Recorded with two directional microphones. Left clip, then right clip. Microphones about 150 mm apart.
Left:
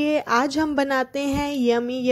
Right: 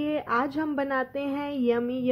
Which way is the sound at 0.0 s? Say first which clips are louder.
Left 6 dB; 50° left (ahead or behind).